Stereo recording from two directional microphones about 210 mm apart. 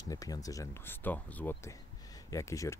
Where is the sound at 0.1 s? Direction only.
15° left (ahead or behind).